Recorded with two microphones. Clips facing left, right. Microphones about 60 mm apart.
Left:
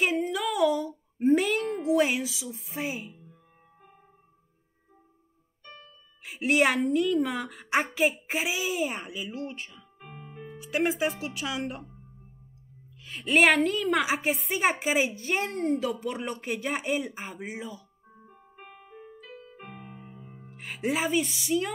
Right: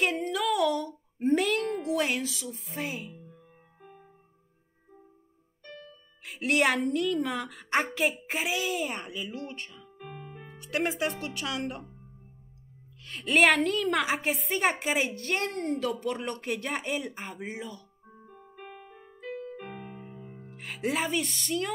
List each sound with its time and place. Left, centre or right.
0.0 s child singing: centre
6.2 s a woman's voice: centre
10.0 s keyboard: centre
10.3 s speech: centre
13.0 s a woman's voice: centre
18.7 s piano: centre
19.6 s keyboard: centre
20.0 s music: right
20.3 s speech: centre